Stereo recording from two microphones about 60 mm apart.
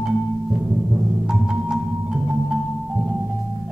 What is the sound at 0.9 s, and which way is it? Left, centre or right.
Music, right.